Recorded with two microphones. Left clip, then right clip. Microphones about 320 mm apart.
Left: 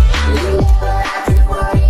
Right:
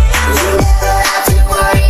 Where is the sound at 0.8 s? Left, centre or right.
Right.